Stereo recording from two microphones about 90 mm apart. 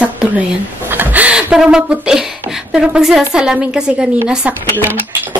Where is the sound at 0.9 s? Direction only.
20° right (ahead or behind).